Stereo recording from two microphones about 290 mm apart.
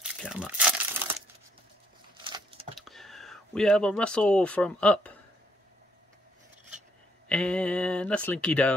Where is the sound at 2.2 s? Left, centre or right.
Centre.